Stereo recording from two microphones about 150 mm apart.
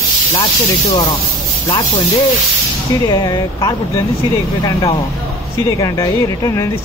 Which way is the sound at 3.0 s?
30° left (ahead or behind).